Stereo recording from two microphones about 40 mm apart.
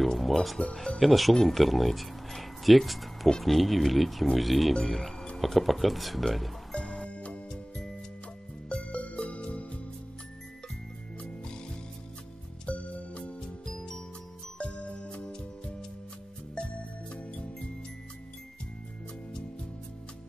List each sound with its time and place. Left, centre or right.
0.0 s speech: centre
6.7 s music: centre
8.6 s music: left
11.1 s music: left
12.6 s music: left
13.7 s music: centre
14.6 s music: left
17.1 s music: left